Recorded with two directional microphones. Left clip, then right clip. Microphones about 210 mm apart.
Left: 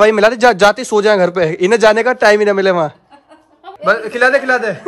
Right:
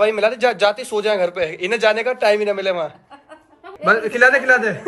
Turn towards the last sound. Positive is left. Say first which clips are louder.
# left 1 dB
turn(degrees=10)  # may be behind; listen again after turning